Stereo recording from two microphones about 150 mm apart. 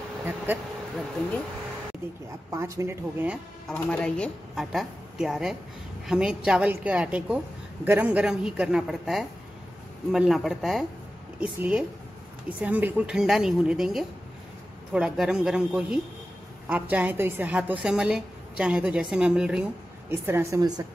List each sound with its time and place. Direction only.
2.5 s a woman's voice: 20° right (ahead or behind)
3.6 s a woman's voice: 5° left (ahead or behind)
20.1 s a woman's voice: 15° right (ahead or behind)